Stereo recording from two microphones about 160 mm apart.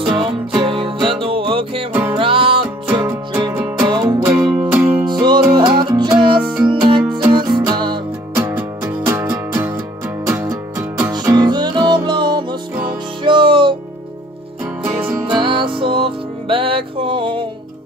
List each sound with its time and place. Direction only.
0.0 s music: 30° right (ahead or behind)
2.9 s music: 10° right (ahead or behind)
3.9 s music: 25° right (ahead or behind)
4.5 s music: 10° right (ahead or behind)
5.0 s music: 25° right (ahead or behind)
8.5 s music: 15° right (ahead or behind); by 13.7 s 30° right (ahead or behind)
15.3 s music: 30° right (ahead or behind)